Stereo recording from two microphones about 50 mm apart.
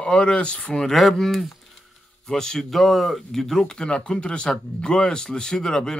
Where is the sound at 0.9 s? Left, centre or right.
Centre.